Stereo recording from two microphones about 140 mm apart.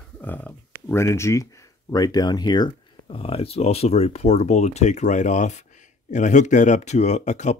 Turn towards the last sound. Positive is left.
turn(degrees=55)  # may be behind; listen again after turning